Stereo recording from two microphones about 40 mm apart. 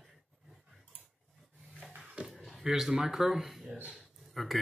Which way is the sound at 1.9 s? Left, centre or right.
Right.